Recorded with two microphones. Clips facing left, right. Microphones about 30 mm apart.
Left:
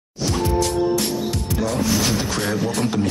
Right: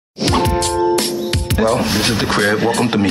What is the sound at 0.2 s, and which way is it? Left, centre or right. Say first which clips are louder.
Music: right 7 dB; right.